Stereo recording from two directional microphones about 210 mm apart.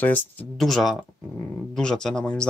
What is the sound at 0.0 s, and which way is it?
Speech, 10° left (ahead or behind).